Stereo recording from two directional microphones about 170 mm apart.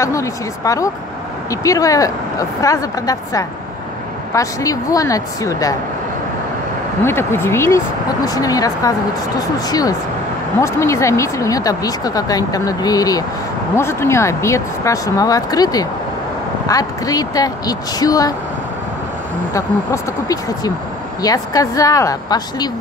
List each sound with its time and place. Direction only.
0.0 s speech: 20° left (ahead or behind)
7.0 s speech: 15° left (ahead or behind)
19.5 s speech: 20° left (ahead or behind)